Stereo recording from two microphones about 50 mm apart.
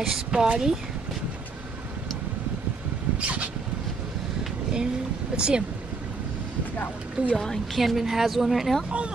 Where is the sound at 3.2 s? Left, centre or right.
Right.